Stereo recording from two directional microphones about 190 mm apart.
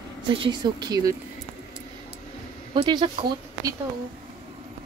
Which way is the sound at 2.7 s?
25° right (ahead or behind).